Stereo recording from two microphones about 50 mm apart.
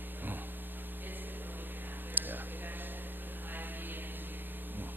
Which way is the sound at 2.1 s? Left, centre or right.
Right.